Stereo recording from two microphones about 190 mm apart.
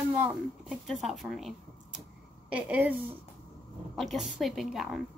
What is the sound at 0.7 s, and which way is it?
A woman's voice, centre (ahead or behind).